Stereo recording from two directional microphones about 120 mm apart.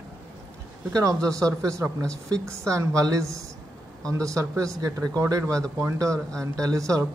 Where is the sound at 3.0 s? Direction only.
25° right (ahead or behind).